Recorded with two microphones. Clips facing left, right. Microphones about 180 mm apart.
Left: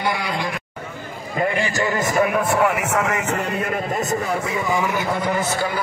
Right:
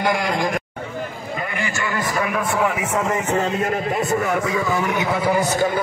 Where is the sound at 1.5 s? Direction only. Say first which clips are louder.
Left 4 dB; 35° left (ahead or behind).